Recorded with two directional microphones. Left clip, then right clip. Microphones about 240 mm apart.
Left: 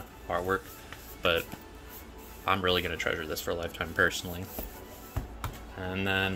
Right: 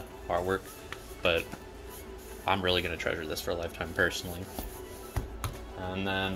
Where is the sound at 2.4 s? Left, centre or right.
Centre.